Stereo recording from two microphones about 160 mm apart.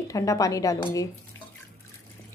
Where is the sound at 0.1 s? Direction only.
20° left (ahead or behind).